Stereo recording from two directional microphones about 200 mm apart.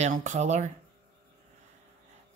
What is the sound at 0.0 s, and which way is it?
Speech, 40° right (ahead or behind).